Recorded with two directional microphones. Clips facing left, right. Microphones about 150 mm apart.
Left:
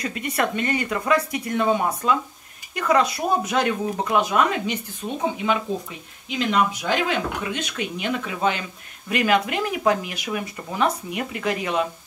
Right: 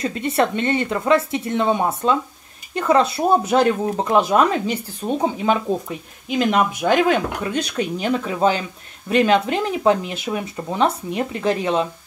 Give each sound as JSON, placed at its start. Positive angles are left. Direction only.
{"t": 0.0, "sound": "speech", "side_deg": -30}
{"t": 6.2, "sound": "speech", "side_deg": -45}